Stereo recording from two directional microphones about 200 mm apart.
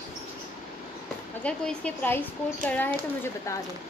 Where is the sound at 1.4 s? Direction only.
5° left (ahead or behind).